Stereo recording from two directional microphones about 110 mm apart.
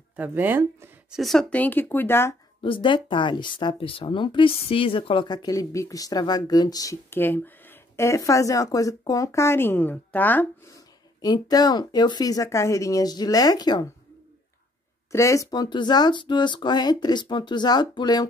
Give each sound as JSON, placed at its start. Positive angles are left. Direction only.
{"t": 0.1, "sound": "speech", "side_deg": -15}
{"t": 1.1, "sound": "speech", "side_deg": 0}
{"t": 2.6, "sound": "speech", "side_deg": 50}
{"t": 7.1, "sound": "speech", "side_deg": 20}
{"t": 11.1, "sound": "speech", "side_deg": 40}
{"t": 15.0, "sound": "speech", "side_deg": 30}